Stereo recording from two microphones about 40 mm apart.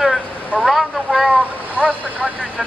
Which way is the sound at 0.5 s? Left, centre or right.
Left.